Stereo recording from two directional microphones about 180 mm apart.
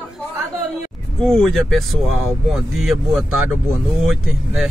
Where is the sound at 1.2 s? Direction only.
Centre (ahead or behind).